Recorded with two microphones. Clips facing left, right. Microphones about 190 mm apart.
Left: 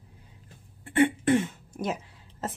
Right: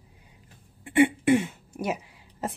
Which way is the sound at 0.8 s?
15° right (ahead or behind).